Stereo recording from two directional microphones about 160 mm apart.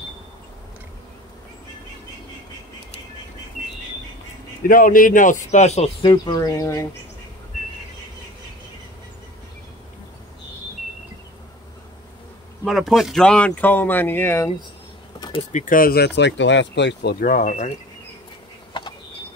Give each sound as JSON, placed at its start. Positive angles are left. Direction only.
{"t": 4.6, "sound": "speech", "side_deg": 60}
{"t": 6.0, "sound": "speech", "side_deg": 25}
{"t": 12.6, "sound": "speech", "side_deg": 0}
{"t": 15.1, "sound": "vehicle", "side_deg": 25}
{"t": 15.5, "sound": "speech", "side_deg": 55}
{"t": 18.7, "sound": "a sound", "side_deg": 30}